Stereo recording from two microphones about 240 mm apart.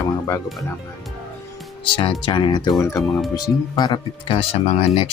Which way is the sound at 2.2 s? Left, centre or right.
Centre.